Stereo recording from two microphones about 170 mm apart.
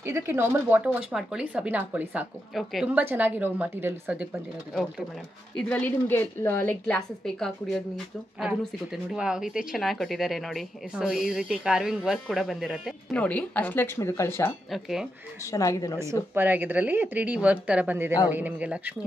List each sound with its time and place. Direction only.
0.0 s speech: 15° right (ahead or behind)
5.6 s a woman's voice: 10° left (ahead or behind)
14.7 s speech: centre (ahead or behind)
15.5 s a woman's voice: 20° left (ahead or behind)
16.3 s speech: 10° right (ahead or behind)